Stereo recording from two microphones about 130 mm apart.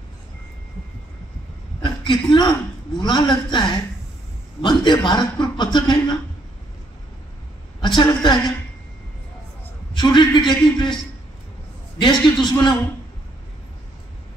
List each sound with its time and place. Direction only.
1.8 s a sound: 35° left (ahead or behind)
3.0 s a man's voice: 35° left (ahead or behind)
7.8 s a woman's voice: 35° left (ahead or behind)
9.9 s a man's voice: 35° left (ahead or behind)
12.0 s a man's voice: 35° left (ahead or behind)